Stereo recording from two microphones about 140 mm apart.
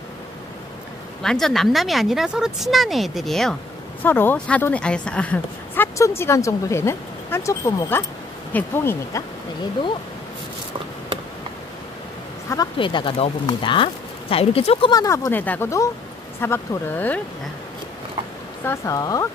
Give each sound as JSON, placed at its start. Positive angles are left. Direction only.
{"t": 1.2, "sound": "speech", "side_deg": 5}
{"t": 4.0, "sound": "speech", "side_deg": 15}
{"t": 5.9, "sound": "speech", "side_deg": 20}
{"t": 12.7, "sound": "speech", "side_deg": 35}
{"t": 14.9, "sound": "speech", "side_deg": 25}
{"t": 18.6, "sound": "speech", "side_deg": 20}